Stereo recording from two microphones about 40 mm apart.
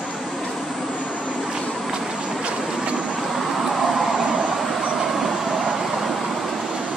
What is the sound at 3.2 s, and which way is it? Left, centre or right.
Vehicle, centre.